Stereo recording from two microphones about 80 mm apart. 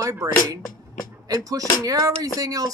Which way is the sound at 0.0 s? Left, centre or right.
Right.